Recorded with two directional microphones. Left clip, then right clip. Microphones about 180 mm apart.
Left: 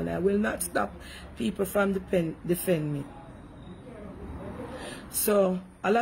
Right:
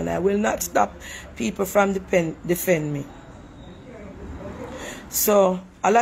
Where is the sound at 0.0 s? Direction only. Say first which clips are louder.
Right 5 dB; 15° left (ahead or behind).